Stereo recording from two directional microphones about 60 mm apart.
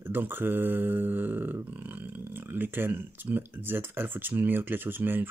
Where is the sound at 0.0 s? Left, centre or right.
Right.